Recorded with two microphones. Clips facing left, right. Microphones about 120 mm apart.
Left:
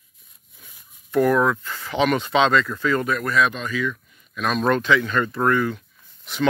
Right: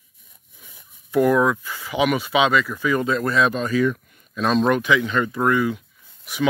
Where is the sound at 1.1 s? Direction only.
15° right (ahead or behind).